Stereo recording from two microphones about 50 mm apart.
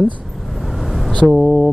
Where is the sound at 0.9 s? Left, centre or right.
Centre.